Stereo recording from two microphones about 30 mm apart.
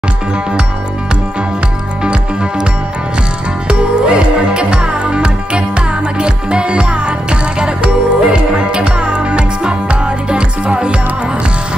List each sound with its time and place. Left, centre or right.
3.6 s music: right